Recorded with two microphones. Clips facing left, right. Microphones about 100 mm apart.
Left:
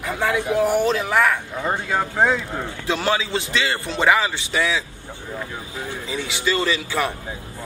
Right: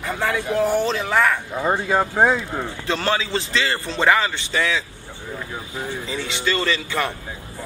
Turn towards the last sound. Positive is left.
turn(degrees=10)  # may be behind; listen again after turning